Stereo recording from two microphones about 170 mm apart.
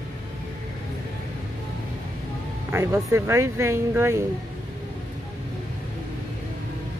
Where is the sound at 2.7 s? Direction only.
15° right (ahead or behind).